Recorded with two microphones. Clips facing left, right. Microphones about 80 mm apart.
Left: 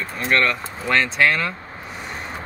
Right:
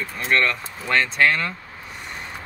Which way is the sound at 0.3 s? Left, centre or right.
Centre.